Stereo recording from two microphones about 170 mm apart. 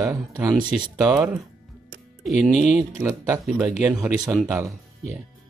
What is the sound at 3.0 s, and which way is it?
Speech, 15° right (ahead or behind).